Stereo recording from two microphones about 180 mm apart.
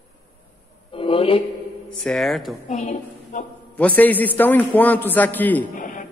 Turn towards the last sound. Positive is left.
turn(degrees=45)  # may be behind; listen again after turning